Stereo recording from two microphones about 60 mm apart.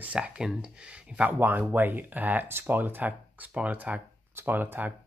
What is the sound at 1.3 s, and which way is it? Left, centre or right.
Speech, right.